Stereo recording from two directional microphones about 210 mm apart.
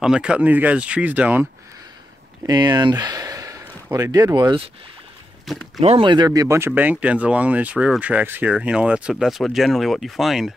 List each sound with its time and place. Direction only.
0.0 s speech: 5° right (ahead or behind)
2.4 s speech: 20° right (ahead or behind)
5.8 s speech: 25° right (ahead or behind); by 10.5 s centre (ahead or behind)